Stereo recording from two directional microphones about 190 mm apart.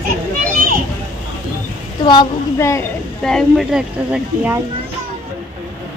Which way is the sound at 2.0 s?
20° left (ahead or behind).